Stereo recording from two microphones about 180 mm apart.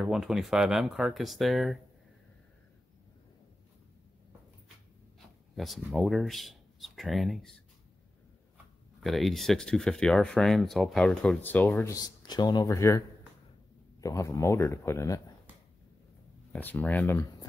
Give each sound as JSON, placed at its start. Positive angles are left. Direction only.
{"t": 0.0, "sound": "speech", "side_deg": 0}
{"t": 5.6, "sound": "speech", "side_deg": 0}
{"t": 9.0, "sound": "speech", "side_deg": 0}
{"t": 14.0, "sound": "speech", "side_deg": 15}
{"t": 16.5, "sound": "speech", "side_deg": 10}